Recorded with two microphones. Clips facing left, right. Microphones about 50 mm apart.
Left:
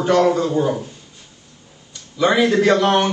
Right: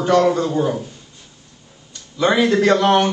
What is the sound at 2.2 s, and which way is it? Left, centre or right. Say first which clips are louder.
Speech: even; centre.